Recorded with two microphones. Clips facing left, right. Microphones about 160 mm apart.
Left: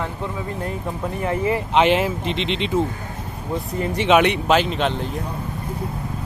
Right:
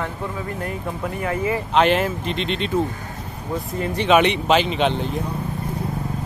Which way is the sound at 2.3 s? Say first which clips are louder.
Left 1 dB; 90° left.